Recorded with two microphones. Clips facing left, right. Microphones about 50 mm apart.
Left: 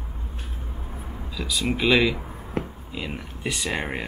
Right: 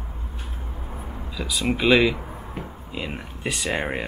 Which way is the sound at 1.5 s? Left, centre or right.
Centre.